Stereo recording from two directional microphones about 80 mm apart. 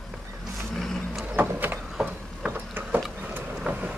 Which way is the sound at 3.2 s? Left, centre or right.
Right.